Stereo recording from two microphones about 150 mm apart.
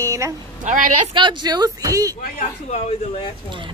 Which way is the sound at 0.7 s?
60° right (ahead or behind).